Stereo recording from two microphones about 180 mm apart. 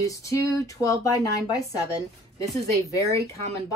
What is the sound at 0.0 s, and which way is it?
A woman's voice, 20° left (ahead or behind).